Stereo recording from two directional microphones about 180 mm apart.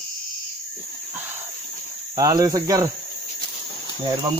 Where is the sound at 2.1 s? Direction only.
20° right (ahead or behind).